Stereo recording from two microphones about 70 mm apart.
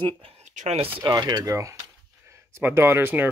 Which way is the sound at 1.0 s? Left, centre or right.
Right.